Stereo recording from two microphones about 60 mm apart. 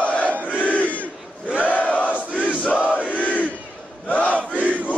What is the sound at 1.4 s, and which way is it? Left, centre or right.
Battle cry, right.